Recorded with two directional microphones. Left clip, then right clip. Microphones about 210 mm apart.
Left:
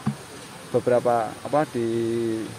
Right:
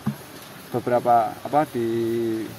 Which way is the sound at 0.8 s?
Centre (ahead or behind).